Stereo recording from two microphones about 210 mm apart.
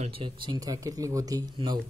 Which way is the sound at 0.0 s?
25° right (ahead or behind).